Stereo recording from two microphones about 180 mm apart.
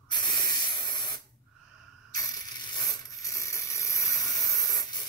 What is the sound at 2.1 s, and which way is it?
Ratchet, 20° left (ahead or behind).